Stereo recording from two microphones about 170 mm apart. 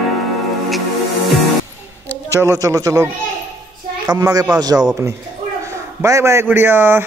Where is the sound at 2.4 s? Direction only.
20° right (ahead or behind).